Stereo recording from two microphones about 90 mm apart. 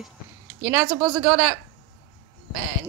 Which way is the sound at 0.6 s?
20° right (ahead or behind).